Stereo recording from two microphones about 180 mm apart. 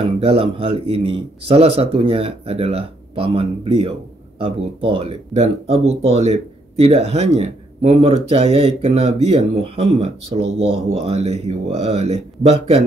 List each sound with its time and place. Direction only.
0.2 s a man's voice: 30° right (ahead or behind)